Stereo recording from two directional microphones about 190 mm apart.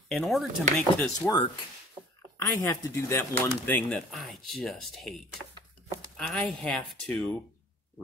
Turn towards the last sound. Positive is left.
turn(degrees=5)  # may be behind; listen again after turning